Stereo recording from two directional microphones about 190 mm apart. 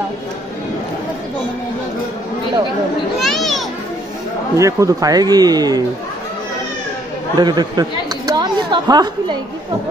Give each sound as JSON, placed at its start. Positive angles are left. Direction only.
{"t": 3.2, "sound": "children playing", "side_deg": 0}
{"t": 4.6, "sound": "a man's voice", "side_deg": -15}
{"t": 7.3, "sound": "a man's voice", "side_deg": -20}